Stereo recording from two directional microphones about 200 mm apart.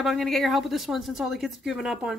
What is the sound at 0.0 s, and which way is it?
A woman's voice, centre (ahead or behind).